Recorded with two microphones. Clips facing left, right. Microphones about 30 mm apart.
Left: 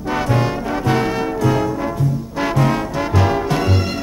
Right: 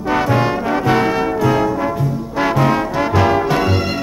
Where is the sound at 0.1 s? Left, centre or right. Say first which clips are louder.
Right 3 dB; centre.